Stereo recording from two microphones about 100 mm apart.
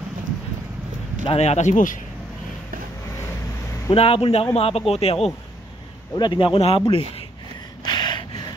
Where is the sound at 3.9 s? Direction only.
70° left (ahead or behind).